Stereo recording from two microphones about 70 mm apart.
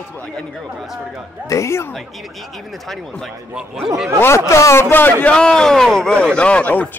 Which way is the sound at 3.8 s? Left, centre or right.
Centre.